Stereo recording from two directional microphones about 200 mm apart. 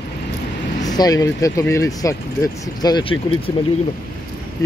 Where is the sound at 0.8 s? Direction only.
20° left (ahead or behind).